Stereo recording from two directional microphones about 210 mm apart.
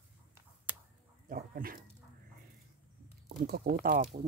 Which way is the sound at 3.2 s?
45° right (ahead or behind).